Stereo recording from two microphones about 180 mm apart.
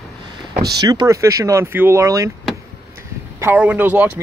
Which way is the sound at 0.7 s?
20° right (ahead or behind).